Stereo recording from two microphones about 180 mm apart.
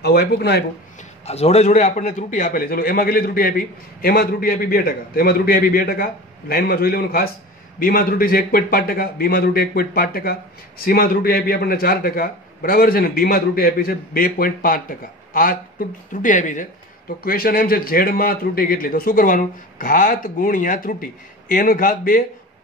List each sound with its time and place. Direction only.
0.0 s a man's voice: 65° left (ahead or behind)
1.2 s a man's voice: 35° left (ahead or behind)